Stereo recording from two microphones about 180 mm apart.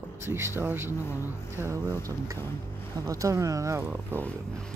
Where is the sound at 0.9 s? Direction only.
15° left (ahead or behind).